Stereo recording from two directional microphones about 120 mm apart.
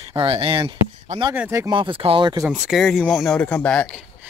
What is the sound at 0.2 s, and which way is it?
Speech, 50° right (ahead or behind).